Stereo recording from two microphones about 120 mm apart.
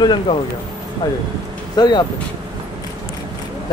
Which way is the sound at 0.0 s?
40° left (ahead or behind).